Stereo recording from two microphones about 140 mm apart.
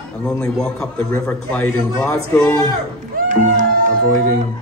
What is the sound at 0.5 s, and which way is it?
A man's voice, 5° left (ahead or behind).